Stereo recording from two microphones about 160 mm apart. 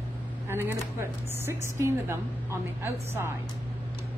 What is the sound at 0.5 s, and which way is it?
A woman's voice, 15° right (ahead or behind).